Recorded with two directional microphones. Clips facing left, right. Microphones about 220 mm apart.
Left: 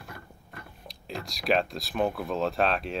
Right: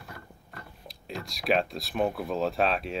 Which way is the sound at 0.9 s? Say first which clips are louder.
Left 1 dB; centre (ahead or behind).